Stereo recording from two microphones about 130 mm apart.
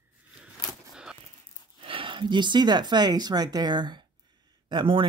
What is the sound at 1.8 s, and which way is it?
Speech, 40° right (ahead or behind).